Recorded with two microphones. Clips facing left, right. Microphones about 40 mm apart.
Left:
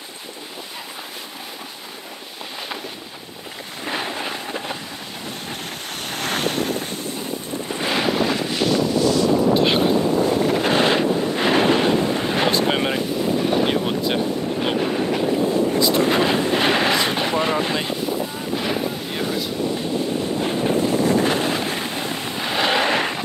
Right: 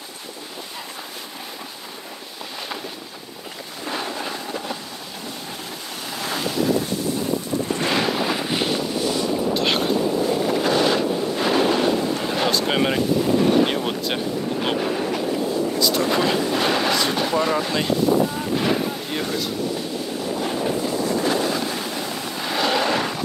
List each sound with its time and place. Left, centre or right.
3.8 s a sound: left
6.0 s waves: left
7.7 s boat: centre
8.5 s wind noise: centre
9.6 s boat: centre
10.6 s wind noise: left
12.6 s boat: centre
15.8 s vehicle: left
18.5 s a sound: centre
20.9 s a sound: left